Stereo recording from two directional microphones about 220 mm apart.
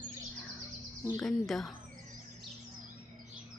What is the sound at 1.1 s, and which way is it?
Speech, centre (ahead or behind).